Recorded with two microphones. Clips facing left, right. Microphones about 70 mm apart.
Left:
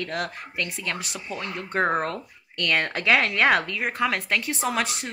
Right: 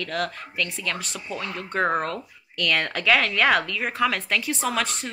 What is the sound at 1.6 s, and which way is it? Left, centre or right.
A woman's voice, left.